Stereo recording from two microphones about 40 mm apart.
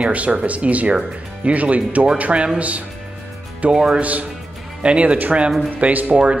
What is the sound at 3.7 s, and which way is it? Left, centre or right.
Speech, right.